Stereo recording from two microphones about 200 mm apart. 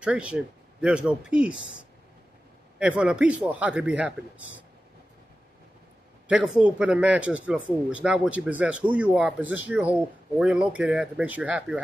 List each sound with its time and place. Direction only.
0.0 s speech: 5° right (ahead or behind)
1.5 s speech: 75° left (ahead or behind)
2.8 s a man's voice: 5° right (ahead or behind)
6.2 s a man's voice: 5° right (ahead or behind)